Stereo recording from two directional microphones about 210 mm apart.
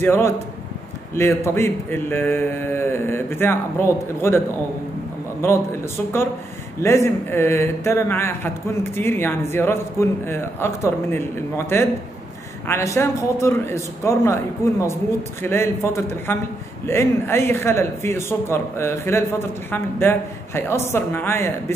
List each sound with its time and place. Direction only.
0.0 s speech: 10° left (ahead or behind)
5.4 s speech: 10° left (ahead or behind)
6.8 s speech: 10° left (ahead or behind)